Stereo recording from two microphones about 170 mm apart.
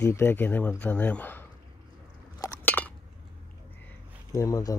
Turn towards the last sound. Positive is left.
turn(degrees=20)  # may be behind; listen again after turning